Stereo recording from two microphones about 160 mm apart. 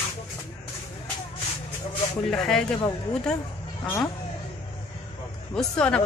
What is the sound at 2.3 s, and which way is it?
Speech, 5° left (ahead or behind).